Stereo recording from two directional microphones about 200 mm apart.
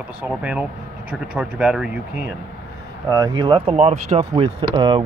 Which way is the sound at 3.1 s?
20° right (ahead or behind).